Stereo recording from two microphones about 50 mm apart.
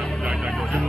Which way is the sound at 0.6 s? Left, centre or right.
Centre.